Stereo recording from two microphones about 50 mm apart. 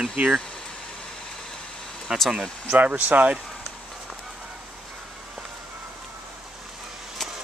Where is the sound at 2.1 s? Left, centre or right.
Centre.